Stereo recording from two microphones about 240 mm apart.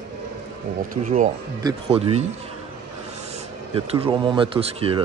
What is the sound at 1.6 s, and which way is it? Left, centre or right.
Speech, right.